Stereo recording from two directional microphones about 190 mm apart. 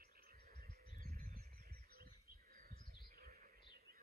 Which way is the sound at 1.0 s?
50° right (ahead or behind).